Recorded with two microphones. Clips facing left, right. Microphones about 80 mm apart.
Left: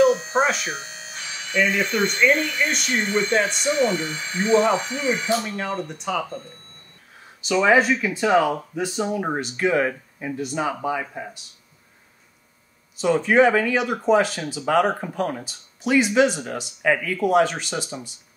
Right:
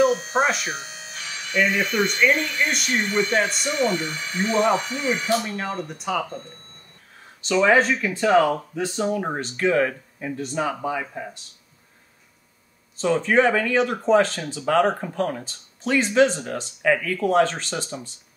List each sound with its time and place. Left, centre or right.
0.0 s speech: centre
0.7 s electric shaver: left
1.5 s speech: centre
3.9 s speech: left
5.4 s speech: centre
7.4 s speech: centre
12.9 s speech: centre